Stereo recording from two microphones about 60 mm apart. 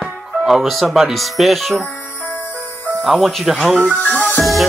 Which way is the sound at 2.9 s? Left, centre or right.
Centre.